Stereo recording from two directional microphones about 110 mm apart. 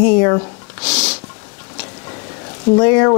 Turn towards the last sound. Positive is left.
turn(degrees=25)  # may be behind; listen again after turning